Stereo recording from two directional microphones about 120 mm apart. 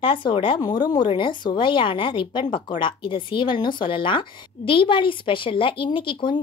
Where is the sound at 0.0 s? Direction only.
45° left (ahead or behind).